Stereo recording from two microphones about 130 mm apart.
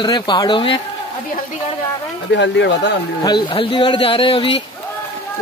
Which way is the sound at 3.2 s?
40° left (ahead or behind).